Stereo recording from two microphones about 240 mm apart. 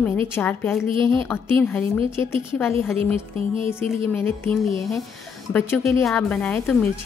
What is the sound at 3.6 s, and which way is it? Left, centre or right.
Speech, centre.